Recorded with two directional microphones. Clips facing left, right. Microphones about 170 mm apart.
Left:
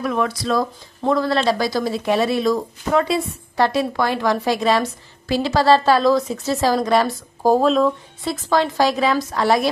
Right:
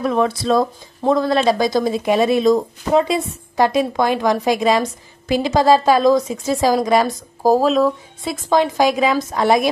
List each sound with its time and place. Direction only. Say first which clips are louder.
0.0 s speech: right 4 dB; 25° right (ahead or behind)